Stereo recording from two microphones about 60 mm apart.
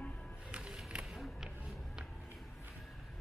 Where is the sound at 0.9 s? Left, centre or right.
Centre.